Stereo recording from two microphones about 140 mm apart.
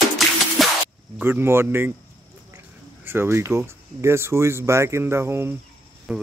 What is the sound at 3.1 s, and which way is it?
Speech, 15° right (ahead or behind).